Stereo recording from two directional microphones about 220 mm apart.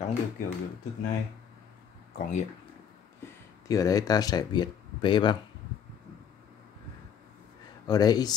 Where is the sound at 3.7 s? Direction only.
15° left (ahead or behind).